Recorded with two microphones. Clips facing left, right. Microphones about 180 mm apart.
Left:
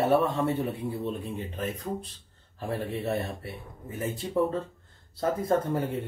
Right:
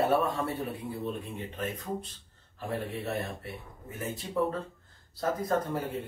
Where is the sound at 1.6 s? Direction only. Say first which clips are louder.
Left 2 dB; 35° left (ahead or behind).